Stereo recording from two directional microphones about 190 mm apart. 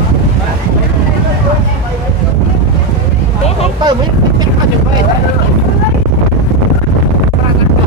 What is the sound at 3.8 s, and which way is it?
Vehicle, 20° right (ahead or behind).